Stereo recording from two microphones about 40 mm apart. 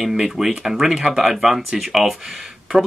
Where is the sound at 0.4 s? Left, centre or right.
Centre.